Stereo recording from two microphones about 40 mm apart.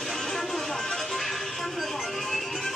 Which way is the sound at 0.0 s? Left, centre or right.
Centre.